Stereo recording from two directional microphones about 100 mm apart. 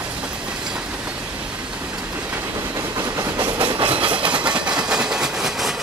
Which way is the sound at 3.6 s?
65° right (ahead or behind).